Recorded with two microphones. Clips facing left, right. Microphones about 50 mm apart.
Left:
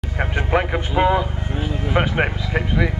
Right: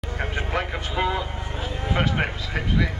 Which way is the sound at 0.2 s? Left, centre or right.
Left.